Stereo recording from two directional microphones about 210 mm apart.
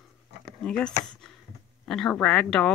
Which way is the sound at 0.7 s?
5° left (ahead or behind).